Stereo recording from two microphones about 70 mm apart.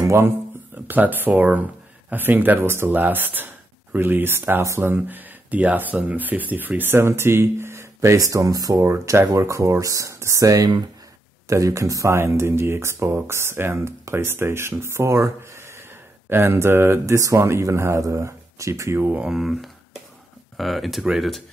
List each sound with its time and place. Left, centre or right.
0.8 s speech: right
8.8 s speech: right
18.9 s speech: right
19.2 s speech: centre